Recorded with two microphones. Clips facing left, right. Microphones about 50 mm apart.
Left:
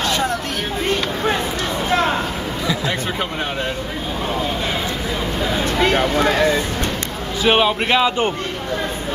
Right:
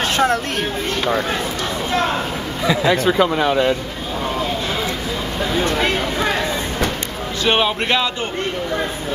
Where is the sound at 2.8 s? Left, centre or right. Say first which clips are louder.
Right 7 dB; right.